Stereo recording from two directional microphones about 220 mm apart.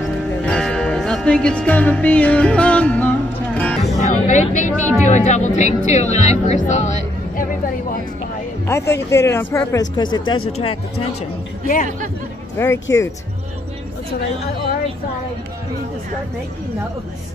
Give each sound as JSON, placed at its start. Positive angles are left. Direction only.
{"t": 0.4, "sound": "music", "side_deg": 5}
{"t": 4.0, "sound": "a sound", "side_deg": 35}
{"t": 5.0, "sound": "speech", "side_deg": 35}
{"t": 8.6, "sound": "speech", "side_deg": 10}
{"t": 11.6, "sound": "speech", "side_deg": 40}
{"t": 12.5, "sound": "speech", "side_deg": 10}